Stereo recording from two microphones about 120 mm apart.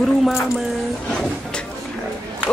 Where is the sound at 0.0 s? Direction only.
Centre (ahead or behind).